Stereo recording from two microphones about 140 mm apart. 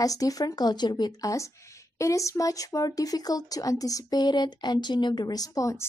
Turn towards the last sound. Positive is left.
turn(degrees=25)  # may be behind; listen again after turning